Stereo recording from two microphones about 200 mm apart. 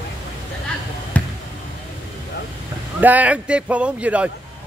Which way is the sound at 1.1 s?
5° left (ahead or behind).